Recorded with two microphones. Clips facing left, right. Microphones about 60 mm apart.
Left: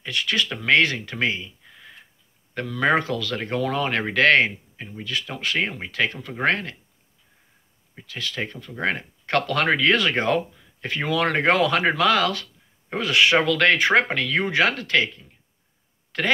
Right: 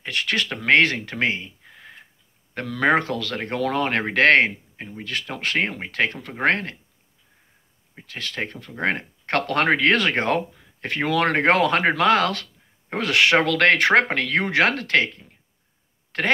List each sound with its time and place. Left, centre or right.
0.0 s speech: right
7.9 s speech: right